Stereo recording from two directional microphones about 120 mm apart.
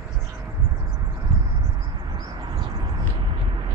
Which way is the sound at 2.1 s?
35° right (ahead or behind).